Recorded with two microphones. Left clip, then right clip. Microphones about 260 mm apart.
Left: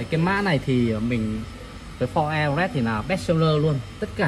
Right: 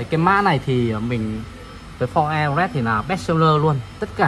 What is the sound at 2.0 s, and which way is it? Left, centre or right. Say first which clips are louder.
Speech: right 4 dB; right.